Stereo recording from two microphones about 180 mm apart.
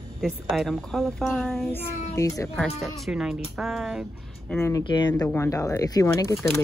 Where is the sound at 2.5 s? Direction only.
5° left (ahead or behind).